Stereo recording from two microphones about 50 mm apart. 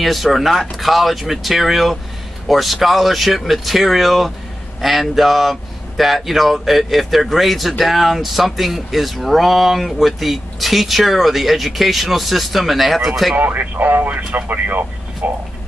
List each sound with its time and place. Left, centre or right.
0.0 s speech: centre
13.4 s speech: right